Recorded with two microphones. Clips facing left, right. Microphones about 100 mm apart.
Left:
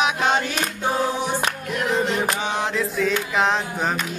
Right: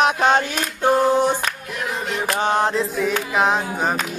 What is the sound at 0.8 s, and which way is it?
Singing, 50° right (ahead or behind).